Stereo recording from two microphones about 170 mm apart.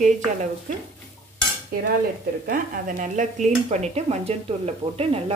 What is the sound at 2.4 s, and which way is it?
Speech, 55° right (ahead or behind).